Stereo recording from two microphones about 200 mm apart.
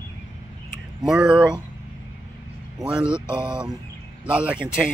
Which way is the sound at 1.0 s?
5° right (ahead or behind).